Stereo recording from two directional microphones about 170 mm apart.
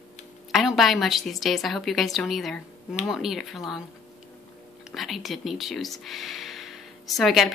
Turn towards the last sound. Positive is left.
turn(degrees=0)  # may be behind; listen again after turning